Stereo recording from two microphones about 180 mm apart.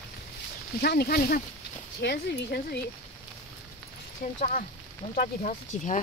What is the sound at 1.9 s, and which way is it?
Speech, 65° left (ahead or behind).